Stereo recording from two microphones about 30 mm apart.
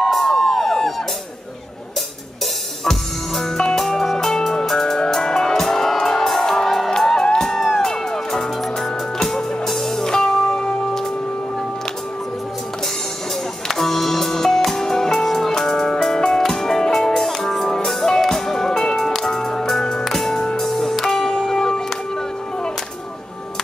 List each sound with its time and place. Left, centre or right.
0.0 s a sound: centre
2.8 s music: centre
7.5 s music: centre
7.9 s music: centre
13.7 s music: centre
17.3 s music: centre; by 20.1 s left
20.1 s music: centre